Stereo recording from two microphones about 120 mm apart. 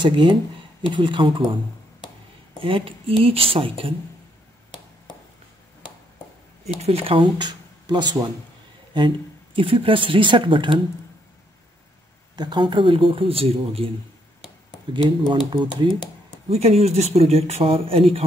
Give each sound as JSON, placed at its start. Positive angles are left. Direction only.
{"t": 0.0, "sound": "speech", "side_deg": -45}
{"t": 2.6, "sound": "speech", "side_deg": -50}
{"t": 6.8, "sound": "speech", "side_deg": -50}
{"t": 12.4, "sound": "speech", "side_deg": -40}
{"t": 15.2, "sound": "speech", "side_deg": -45}
{"t": 16.4, "sound": "speech", "side_deg": -60}